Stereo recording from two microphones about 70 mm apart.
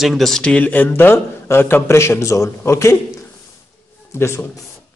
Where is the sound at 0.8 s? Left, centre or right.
Left.